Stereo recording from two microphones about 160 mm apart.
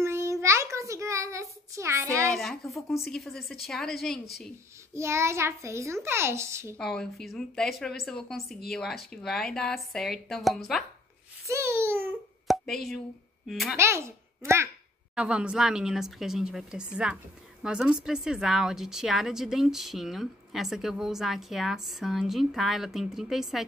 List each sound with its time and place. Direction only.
0.0 s a sound: 15° right (ahead or behind)
2.2 s speech: 5° left (ahead or behind)
4.9 s a child's voice: 15° right (ahead or behind)
6.8 s speech: 5° left (ahead or behind)
11.4 s a sound: 15° right (ahead or behind)
12.4 s a sound: centre (ahead or behind)
13.5 s speech: centre (ahead or behind)
13.7 s a child's voice: 15° right (ahead or behind)
15.1 s speech: 5° right (ahead or behind)